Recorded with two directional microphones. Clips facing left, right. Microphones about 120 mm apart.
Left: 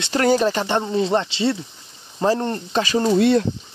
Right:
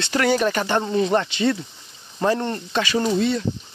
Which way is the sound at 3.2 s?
70° left (ahead or behind).